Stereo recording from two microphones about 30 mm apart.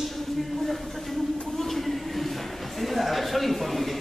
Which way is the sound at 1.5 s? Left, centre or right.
Centre.